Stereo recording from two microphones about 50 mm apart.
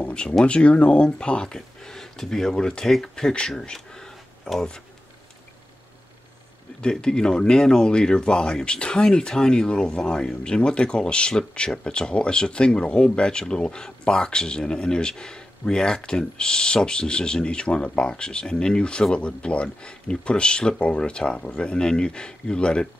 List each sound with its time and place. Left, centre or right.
0.0 s a sound: left
0.5 s speech: left
6.8 s speech: centre